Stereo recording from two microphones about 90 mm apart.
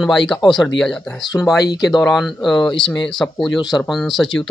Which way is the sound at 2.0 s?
Centre (ahead or behind).